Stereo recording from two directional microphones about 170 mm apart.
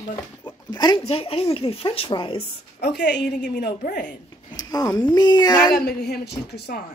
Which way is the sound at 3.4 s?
65° left (ahead or behind).